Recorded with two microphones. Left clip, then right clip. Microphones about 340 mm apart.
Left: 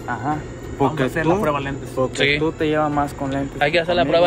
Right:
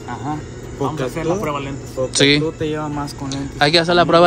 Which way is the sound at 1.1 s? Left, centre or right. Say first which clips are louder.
Left 2 dB; left.